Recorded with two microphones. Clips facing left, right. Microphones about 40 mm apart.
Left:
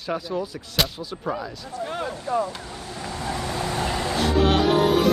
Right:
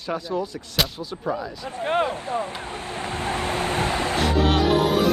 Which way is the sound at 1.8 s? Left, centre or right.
Right.